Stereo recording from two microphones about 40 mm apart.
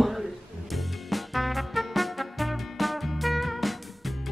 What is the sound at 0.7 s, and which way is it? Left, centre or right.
Music, centre.